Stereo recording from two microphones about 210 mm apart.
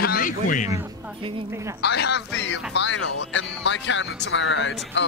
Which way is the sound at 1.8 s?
50° left (ahead or behind).